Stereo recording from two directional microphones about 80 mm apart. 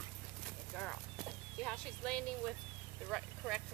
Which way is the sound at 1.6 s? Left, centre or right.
Centre.